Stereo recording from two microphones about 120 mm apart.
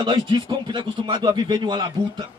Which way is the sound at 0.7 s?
40° right (ahead or behind).